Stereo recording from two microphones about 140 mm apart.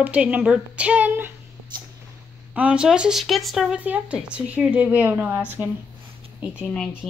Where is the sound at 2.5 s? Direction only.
10° right (ahead or behind).